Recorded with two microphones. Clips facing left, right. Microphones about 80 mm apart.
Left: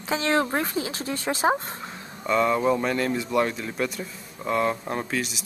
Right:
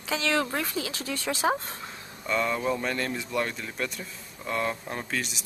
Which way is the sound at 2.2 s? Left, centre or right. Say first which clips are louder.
Left 6 dB; centre.